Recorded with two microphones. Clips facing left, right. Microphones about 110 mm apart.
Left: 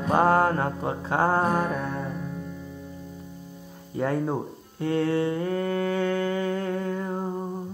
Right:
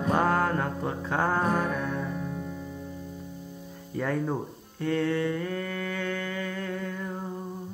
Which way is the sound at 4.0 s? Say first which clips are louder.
Left 3 dB; 25° left (ahead or behind).